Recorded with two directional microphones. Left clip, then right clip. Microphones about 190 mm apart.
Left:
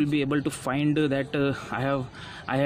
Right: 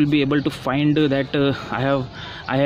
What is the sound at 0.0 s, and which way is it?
Speech, 5° left (ahead or behind).